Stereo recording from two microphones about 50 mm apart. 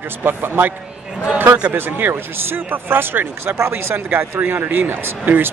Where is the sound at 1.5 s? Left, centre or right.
Right.